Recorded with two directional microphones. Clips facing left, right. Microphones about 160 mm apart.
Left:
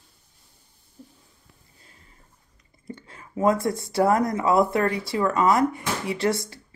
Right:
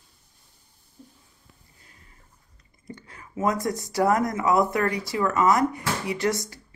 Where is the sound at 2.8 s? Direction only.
25° left (ahead or behind).